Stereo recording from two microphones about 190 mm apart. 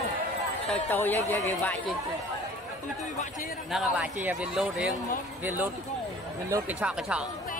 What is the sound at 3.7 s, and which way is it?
A man's voice, 5° right (ahead or behind).